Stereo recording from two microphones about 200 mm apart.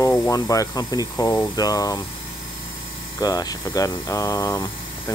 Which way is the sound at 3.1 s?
20° left (ahead or behind).